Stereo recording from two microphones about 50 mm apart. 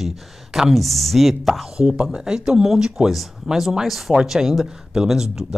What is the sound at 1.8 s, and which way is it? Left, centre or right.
Speech, centre.